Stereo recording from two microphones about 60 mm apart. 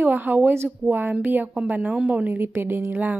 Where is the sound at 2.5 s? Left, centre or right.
Right.